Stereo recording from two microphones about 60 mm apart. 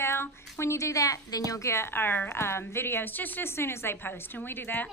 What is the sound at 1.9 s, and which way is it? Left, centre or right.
A woman's voice, left.